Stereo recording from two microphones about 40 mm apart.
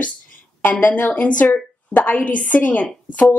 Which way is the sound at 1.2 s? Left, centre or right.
Left.